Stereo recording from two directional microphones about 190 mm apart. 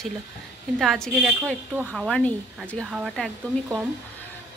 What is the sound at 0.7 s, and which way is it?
A woman's voice, centre (ahead or behind).